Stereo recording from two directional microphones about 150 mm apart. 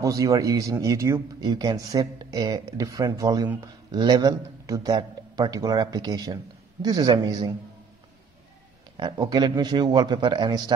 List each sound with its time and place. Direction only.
0.0 s a man's voice: 20° right (ahead or behind)
8.9 s a man's voice: 30° right (ahead or behind)